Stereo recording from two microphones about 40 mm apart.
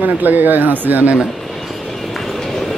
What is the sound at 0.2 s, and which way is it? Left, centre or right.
Speech, right.